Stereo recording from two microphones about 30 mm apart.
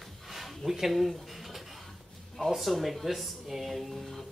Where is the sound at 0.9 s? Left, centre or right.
Centre.